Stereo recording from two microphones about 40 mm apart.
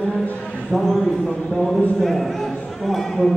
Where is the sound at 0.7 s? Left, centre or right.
Centre.